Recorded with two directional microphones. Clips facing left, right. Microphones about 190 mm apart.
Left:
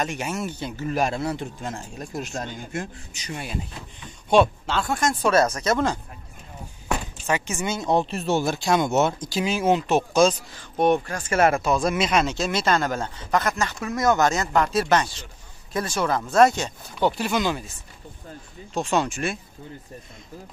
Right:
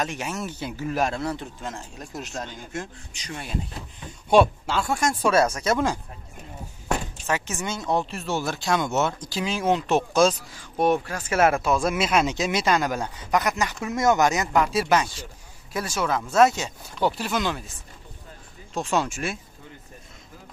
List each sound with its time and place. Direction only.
0.0 s speech: centre (ahead or behind)
4.3 s speech: 10° right (ahead or behind)
7.2 s speech: centre (ahead or behind)
7.8 s speech: 20° left (ahead or behind); by 17.6 s centre (ahead or behind)
18.7 s speech: centre (ahead or behind)